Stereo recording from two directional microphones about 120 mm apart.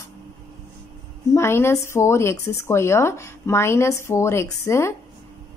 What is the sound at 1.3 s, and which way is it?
Speech, 20° left (ahead or behind).